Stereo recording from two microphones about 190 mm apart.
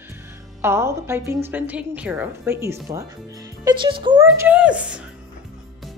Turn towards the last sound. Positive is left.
turn(degrees=-5)  # may be behind; listen again after turning